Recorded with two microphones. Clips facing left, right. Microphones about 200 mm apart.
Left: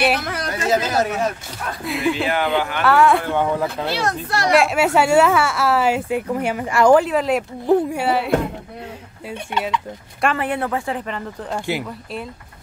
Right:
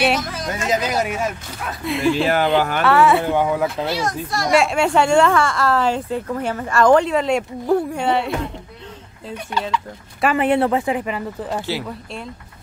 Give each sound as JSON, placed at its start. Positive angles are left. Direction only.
{"t": 0.2, "sound": "a sound", "side_deg": 65}
{"t": 0.7, "sound": "speech", "side_deg": -15}
{"t": 1.7, "sound": "speech", "side_deg": 0}
{"t": 2.2, "sound": "speech", "side_deg": -40}
{"t": 2.8, "sound": "speech", "side_deg": 0}
{"t": 3.9, "sound": "speech", "side_deg": 65}
{"t": 4.5, "sound": "a woman's voice", "side_deg": 0}
{"t": 9.3, "sound": "speech", "side_deg": 25}
{"t": 10.3, "sound": "speech", "side_deg": -25}
{"t": 11.0, "sound": "speech", "side_deg": -10}